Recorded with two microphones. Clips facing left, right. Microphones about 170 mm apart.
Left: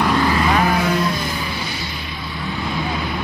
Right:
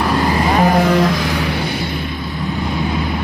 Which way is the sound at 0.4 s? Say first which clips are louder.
Right 4 dB; 40° right (ahead or behind).